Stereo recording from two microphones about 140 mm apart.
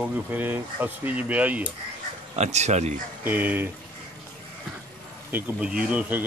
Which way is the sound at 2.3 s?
55° right (ahead or behind).